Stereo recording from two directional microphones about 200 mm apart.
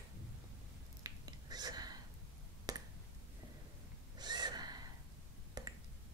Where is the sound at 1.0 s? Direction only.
20° right (ahead or behind).